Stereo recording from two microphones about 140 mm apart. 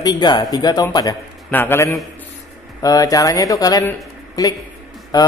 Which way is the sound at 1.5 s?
15° left (ahead or behind).